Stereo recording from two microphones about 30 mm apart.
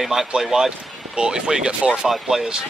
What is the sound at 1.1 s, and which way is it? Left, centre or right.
Speech, right.